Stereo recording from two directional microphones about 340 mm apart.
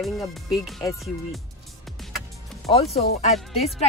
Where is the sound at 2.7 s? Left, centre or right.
Centre.